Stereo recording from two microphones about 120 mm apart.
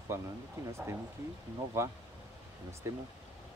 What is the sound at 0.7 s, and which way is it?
Speech, 25° right (ahead or behind).